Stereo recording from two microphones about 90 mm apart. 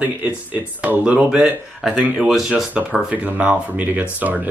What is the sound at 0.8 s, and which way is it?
Speech, 15° right (ahead or behind).